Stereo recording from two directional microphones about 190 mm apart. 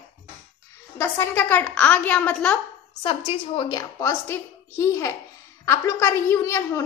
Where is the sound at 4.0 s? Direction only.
15° left (ahead or behind).